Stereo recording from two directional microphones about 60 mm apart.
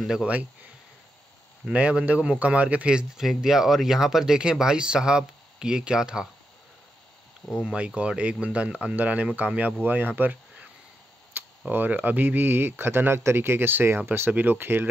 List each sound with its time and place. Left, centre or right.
0.0 s speech: centre
1.7 s speech: right
7.5 s speech: centre; by 10.7 s right
11.3 s tick: right
11.7 s speech: right